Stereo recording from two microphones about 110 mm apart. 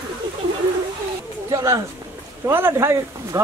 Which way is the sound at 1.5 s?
30° right (ahead or behind).